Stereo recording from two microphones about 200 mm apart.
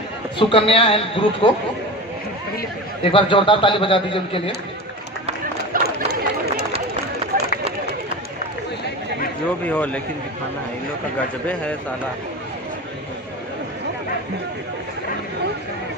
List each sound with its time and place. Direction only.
0.4 s a man's voice: 25° left (ahead or behind)
3.0 s a man's voice: 25° left (ahead or behind)
5.7 s a sound: 50° right (ahead or behind)
9.7 s speech: 5° left (ahead or behind)